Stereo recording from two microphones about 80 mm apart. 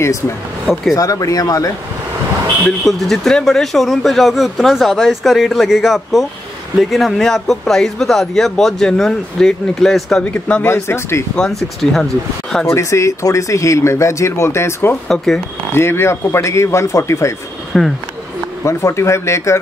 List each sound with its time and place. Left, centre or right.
0.9 s speech: left
2.6 s speech: centre
10.3 s speech: centre
10.7 s speech: left
11.3 s speech: centre
12.6 s speech: left
15.0 s speech: centre
15.7 s speech: left
17.7 s speech: centre
18.6 s speech: left